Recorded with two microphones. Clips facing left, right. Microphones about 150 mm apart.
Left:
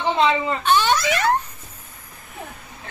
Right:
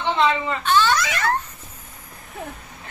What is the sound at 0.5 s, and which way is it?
Giggle, 20° left (ahead or behind).